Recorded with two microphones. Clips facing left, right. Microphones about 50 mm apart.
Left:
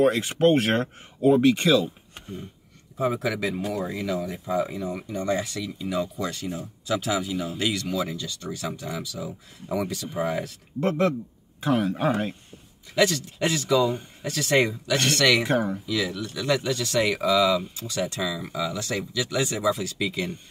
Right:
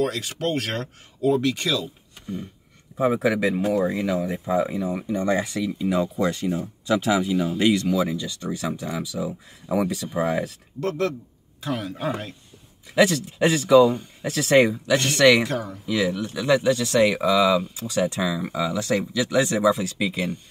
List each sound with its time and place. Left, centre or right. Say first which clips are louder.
0.0 s speech: left 5 dB; left
3.0 s speech: right 5 dB; centre
6.9 s speech: right 5 dB; centre
10.8 s a man's voice: left 2 dB; left
12.9 s speech: right 3 dB; centre
15.4 s speech: left 4 dB; left
15.8 s speech: right 4 dB; right
19.6 s speech: right 4 dB; right
20.0 s speech: right 2 dB; centre